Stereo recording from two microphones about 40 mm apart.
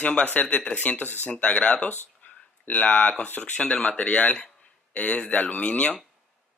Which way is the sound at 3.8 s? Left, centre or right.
Left.